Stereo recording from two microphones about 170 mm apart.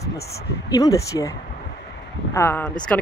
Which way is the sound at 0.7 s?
20° left (ahead or behind).